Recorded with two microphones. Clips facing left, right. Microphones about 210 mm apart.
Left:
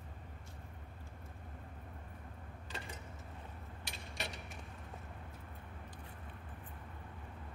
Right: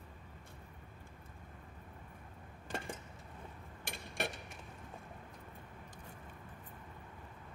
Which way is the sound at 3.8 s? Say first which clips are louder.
Right 6 dB; 50° right (ahead or behind).